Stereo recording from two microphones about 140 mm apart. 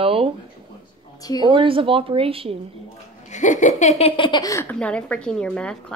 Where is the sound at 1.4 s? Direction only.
35° right (ahead or behind).